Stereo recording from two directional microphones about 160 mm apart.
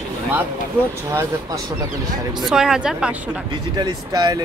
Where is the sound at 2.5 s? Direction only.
5° right (ahead or behind).